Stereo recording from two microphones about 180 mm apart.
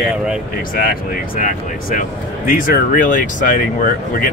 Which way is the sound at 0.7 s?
55° left (ahead or behind).